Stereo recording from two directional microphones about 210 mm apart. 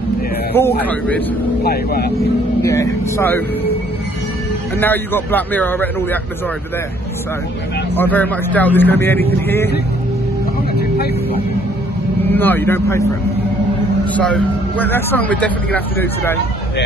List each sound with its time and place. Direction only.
0.6 s a man's voice: 10° left (ahead or behind)
1.6 s speech: 45° left (ahead or behind)
2.6 s a man's voice: 15° left (ahead or behind)
4.7 s a man's voice: 10° left (ahead or behind)
7.9 s a man's voice: 10° left (ahead or behind)
12.4 s a man's voice: 10° left (ahead or behind)
14.1 s a man's voice: 5° left (ahead or behind)